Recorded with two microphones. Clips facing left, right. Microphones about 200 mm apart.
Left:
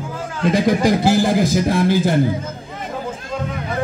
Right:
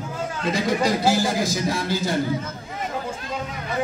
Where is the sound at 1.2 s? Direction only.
55° left (ahead or behind).